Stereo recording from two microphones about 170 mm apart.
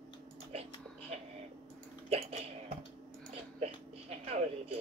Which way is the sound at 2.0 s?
35° right (ahead or behind).